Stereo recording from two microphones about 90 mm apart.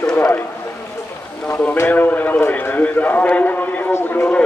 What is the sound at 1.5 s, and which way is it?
A man's voice, 25° left (ahead or behind).